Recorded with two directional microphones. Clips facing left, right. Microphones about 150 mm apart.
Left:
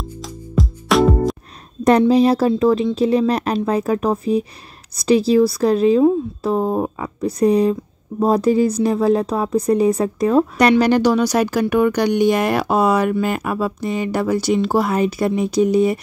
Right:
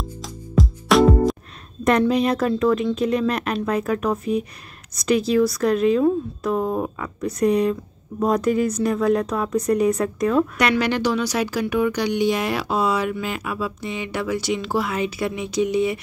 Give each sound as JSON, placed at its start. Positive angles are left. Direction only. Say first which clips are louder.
{"t": 0.2, "sound": "music", "louder": "even", "side_deg": 0}
{"t": 1.9, "sound": "a woman's voice", "louder": "left 5 dB", "side_deg": 35}